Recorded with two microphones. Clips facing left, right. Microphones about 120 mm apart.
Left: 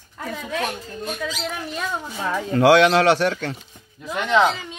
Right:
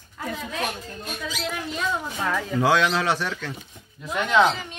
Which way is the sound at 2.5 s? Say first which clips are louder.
Left 8 dB; 70° left (ahead or behind).